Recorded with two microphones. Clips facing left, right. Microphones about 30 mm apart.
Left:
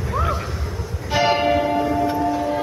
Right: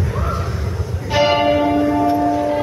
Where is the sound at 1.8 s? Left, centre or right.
Centre.